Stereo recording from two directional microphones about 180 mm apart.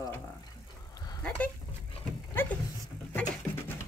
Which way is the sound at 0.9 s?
20° left (ahead or behind).